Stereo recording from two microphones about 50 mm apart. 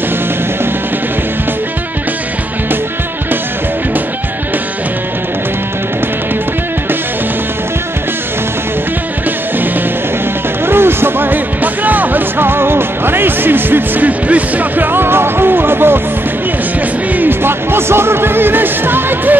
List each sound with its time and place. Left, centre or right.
10.6 s music: right
17.1 s music: right